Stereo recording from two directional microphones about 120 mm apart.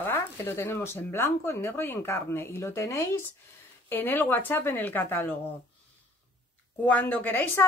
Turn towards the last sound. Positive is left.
turn(degrees=15)  # may be behind; listen again after turning